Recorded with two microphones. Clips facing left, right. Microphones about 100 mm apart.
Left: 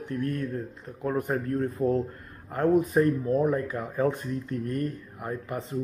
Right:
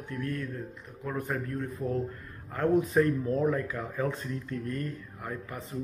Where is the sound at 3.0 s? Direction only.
25° left (ahead or behind).